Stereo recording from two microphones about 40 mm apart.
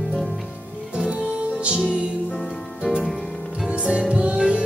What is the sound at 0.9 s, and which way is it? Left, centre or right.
Music, right.